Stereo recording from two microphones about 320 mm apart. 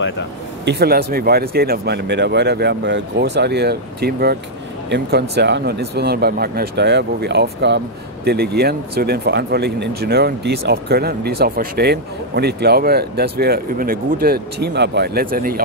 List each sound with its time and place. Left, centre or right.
0.7 s speech: right